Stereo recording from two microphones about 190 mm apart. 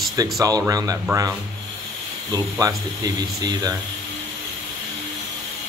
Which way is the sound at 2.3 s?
20° right (ahead or behind).